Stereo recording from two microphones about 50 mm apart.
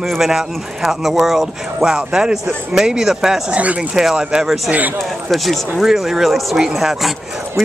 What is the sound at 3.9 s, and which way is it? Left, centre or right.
Speech, centre.